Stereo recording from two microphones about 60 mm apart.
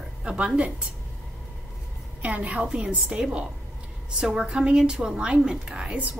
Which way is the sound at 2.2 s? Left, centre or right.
Right.